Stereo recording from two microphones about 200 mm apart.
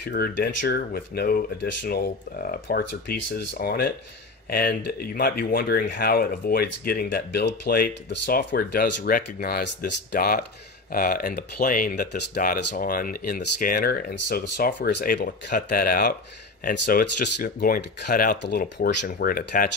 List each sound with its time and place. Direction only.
0.1 s speech: 50° left (ahead or behind)
2.8 s speech: 60° left (ahead or behind)